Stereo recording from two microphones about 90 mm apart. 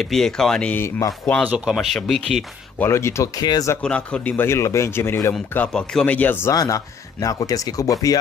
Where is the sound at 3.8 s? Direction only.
10° left (ahead or behind).